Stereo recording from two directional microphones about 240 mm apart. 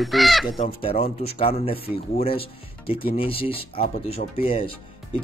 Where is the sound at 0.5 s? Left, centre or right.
Left.